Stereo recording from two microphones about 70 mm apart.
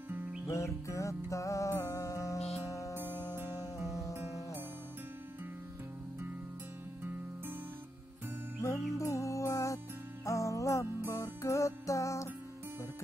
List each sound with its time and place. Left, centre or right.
0.5 s music: left
8.6 s music: left